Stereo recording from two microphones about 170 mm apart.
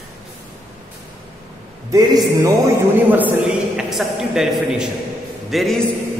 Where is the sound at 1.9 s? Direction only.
20° right (ahead or behind).